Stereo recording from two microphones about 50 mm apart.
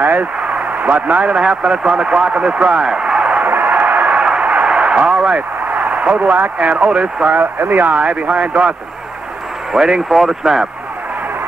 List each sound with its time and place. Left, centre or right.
0.0 s a man's voice: right
3.4 s a sound: right
7.3 s speech: right
8.0 s speech: right
9.7 s speech: centre